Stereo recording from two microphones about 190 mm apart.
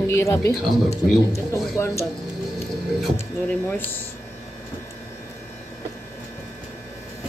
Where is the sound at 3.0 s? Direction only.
10° left (ahead or behind).